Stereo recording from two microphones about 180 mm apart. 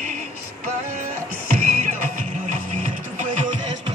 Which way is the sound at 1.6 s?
45° right (ahead or behind).